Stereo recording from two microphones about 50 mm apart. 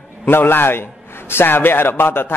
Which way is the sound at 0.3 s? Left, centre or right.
Left.